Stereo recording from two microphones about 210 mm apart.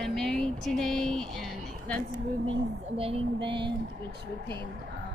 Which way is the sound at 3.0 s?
25° right (ahead or behind).